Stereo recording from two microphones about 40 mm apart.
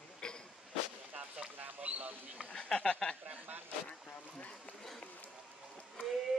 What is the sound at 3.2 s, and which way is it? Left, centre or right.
Speech, right.